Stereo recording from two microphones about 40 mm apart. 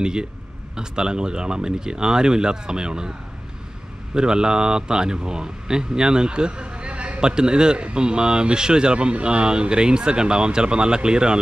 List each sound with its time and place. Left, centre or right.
0.0 s speech: centre
4.1 s speech: centre